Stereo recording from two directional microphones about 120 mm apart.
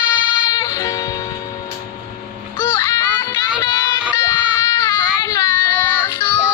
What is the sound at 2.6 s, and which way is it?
Music, 25° left (ahead or behind).